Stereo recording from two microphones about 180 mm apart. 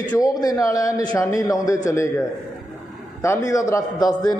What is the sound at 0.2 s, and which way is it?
A man's voice, 20° left (ahead or behind).